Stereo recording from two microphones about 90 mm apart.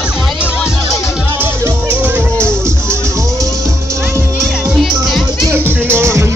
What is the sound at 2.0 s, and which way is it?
Music, 15° right (ahead or behind).